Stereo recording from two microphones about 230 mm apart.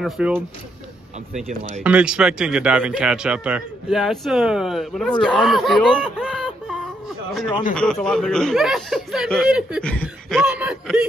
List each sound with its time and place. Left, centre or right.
0.0 s a man's voice: centre
1.5 s speech: right
1.8 s a man's voice: centre